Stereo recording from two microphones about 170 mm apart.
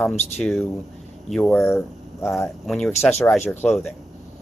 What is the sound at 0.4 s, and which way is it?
Speech, centre (ahead or behind).